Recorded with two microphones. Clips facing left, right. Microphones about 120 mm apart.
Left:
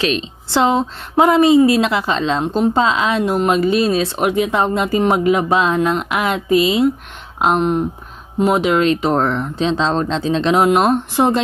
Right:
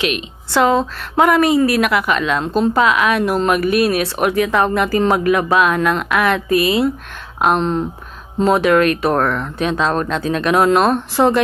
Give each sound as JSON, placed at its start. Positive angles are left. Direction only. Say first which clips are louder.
{"t": 0.0, "sound": "speech", "louder": "left 2 dB", "side_deg": 30}